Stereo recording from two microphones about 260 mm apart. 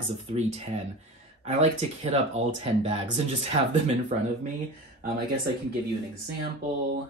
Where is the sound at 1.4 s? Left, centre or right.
Right.